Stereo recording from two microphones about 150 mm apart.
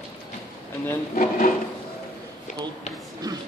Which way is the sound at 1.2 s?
60° left (ahead or behind).